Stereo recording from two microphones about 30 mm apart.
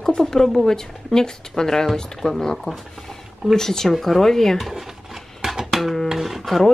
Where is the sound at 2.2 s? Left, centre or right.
Left.